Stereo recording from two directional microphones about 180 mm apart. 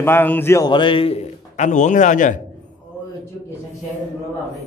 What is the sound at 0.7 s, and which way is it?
A man's voice, 25° left (ahead or behind).